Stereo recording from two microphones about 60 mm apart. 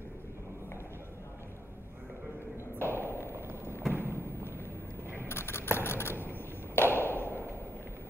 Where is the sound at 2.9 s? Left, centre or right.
Left.